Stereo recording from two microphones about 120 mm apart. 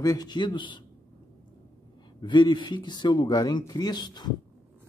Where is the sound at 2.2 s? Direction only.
40° left (ahead or behind).